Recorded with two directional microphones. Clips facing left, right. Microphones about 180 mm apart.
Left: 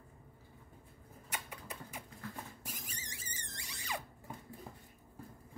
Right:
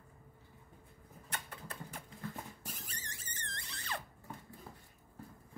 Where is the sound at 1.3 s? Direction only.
10° left (ahead or behind).